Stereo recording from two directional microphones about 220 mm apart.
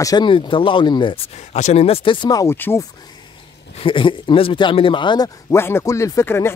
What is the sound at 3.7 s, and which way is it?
Speech, 25° left (ahead or behind).